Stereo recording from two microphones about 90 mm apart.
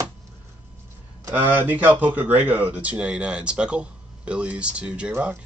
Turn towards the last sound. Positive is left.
turn(degrees=-15)  # may be behind; listen again after turning